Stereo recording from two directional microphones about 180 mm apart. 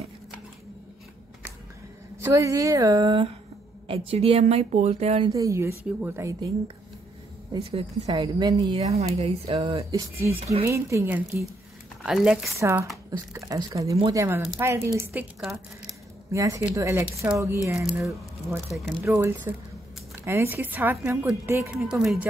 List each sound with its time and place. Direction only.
2.2 s speech: 15° right (ahead or behind); by 5.3 s 35° right (ahead or behind)
5.3 s speech: 15° right (ahead or behind)
7.7 s speech: 25° right (ahead or behind)
8.8 s speech: 35° right (ahead or behind); by 12.4 s 5° right (ahead or behind)
12.5 s speech: 15° right (ahead or behind)
14.2 s speech: 15° right (ahead or behind)
15.4 s speech: centre (ahead or behind)
16.3 s speech: 20° right (ahead or behind)
18.7 s speech: centre (ahead or behind)
19.0 s speech: 15° right (ahead or behind)
21.7 s speech: centre (ahead or behind)